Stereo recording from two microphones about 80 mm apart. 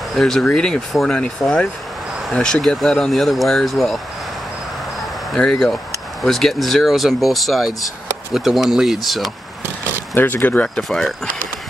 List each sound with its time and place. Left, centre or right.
0.1 s speech: centre
5.3 s speech: centre
10.1 s speech: left
10.8 s speech: centre